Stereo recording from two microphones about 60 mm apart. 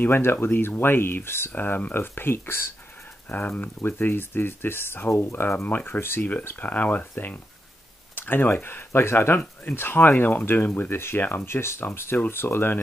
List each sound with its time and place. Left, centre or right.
0.0 s speech: left
1.5 s speech: left
3.3 s speech: left
3.8 s speech: left
6.4 s speech: left